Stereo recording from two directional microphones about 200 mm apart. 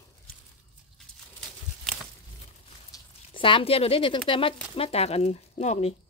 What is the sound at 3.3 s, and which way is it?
Speech, 25° left (ahead or behind).